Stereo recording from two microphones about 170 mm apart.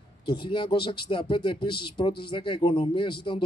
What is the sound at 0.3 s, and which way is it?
Speech, 30° left (ahead or behind).